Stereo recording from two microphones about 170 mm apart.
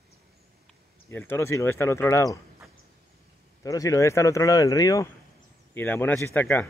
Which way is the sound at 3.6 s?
20° left (ahead or behind).